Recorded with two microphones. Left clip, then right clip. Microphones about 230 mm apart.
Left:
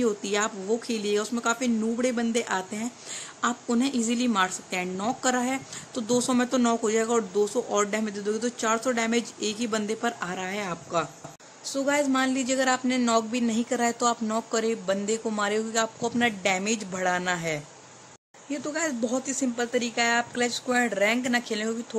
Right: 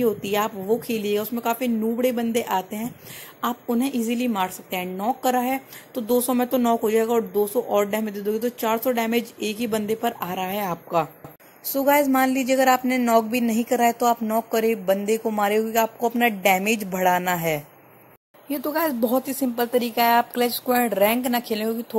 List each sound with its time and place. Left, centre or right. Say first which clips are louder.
0.0 s a woman's voice: right 4 dB; centre